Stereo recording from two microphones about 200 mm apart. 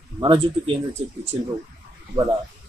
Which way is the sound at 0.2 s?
25° right (ahead or behind).